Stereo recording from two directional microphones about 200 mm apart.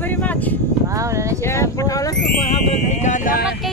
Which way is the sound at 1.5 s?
15° left (ahead or behind).